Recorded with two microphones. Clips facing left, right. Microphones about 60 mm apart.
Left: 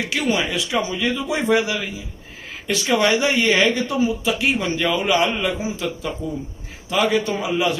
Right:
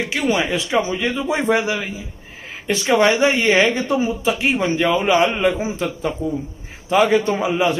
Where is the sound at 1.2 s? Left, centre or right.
Right.